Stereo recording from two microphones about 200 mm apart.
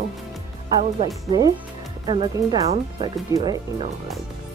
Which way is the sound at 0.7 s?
20° right (ahead or behind).